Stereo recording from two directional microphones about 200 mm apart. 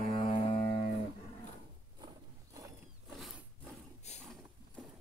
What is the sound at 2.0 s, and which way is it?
Wild animals, 20° right (ahead or behind).